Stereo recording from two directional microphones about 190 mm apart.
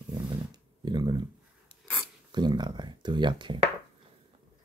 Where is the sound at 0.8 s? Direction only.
20° right (ahead or behind).